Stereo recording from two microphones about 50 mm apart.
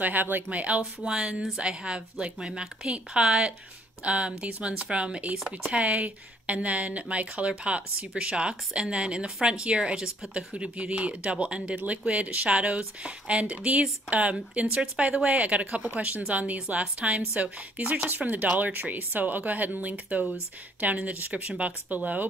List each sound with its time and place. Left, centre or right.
0.0 s speech: right
1.0 s speech: centre